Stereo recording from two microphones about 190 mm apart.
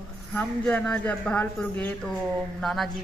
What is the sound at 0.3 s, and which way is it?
A man's voice, 5° left (ahead or behind).